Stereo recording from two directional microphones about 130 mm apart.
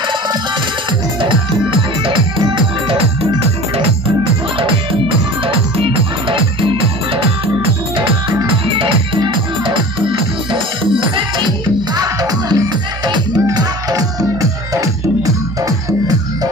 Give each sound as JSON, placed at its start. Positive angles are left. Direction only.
{"t": 1.2, "sound": "music", "side_deg": -40}
{"t": 4.6, "sound": "music", "side_deg": -40}
{"t": 8.6, "sound": "music", "side_deg": -45}